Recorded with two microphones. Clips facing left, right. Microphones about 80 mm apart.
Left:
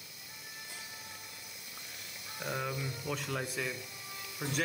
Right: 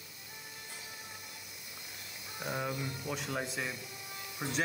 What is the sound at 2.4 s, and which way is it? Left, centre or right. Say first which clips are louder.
Speech: even; centre.